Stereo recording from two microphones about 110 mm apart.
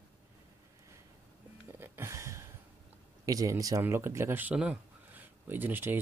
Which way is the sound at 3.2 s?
30° right (ahead or behind).